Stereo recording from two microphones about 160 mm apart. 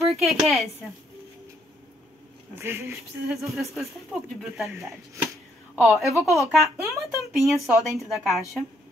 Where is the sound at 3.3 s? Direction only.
Centre (ahead or behind).